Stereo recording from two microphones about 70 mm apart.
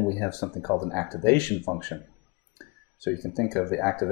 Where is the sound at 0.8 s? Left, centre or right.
Centre.